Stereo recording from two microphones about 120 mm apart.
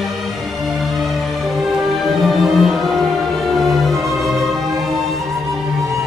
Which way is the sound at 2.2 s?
Centre (ahead or behind).